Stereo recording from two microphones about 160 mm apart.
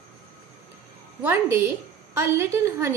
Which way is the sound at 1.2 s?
10° right (ahead or behind).